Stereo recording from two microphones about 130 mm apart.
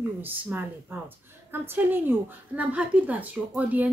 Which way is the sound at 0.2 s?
15° right (ahead or behind).